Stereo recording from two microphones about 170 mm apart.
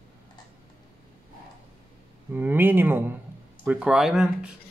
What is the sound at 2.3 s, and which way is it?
Speech, 10° right (ahead or behind).